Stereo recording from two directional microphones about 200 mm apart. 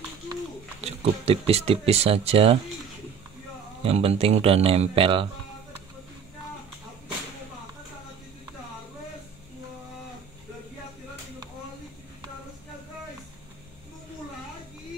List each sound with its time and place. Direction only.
0.3 s speech: 30° right (ahead or behind)
3.8 s speech: 30° right (ahead or behind)